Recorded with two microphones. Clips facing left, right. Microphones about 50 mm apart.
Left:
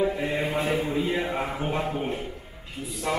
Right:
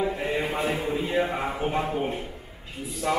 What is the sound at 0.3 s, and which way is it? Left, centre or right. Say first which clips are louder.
Mantra: even; right.